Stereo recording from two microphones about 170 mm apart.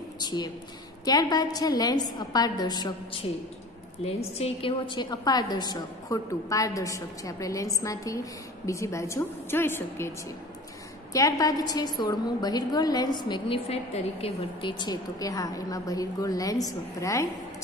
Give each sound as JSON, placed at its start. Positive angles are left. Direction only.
{"t": 0.2, "sound": "a woman's voice", "side_deg": 25}